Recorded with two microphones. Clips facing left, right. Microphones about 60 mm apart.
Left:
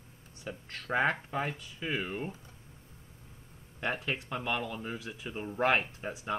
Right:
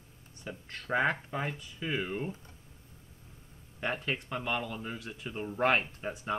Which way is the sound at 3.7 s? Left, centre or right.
Centre.